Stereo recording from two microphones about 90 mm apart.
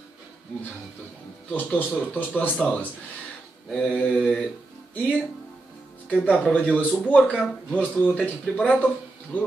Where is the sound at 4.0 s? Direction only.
15° left (ahead or behind).